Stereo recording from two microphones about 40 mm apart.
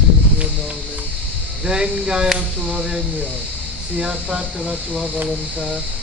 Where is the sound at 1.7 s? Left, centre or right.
Centre.